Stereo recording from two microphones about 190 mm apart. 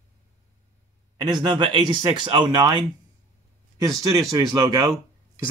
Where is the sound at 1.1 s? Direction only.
20° right (ahead or behind).